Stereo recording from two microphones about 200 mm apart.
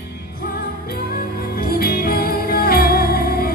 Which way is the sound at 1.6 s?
50° left (ahead or behind).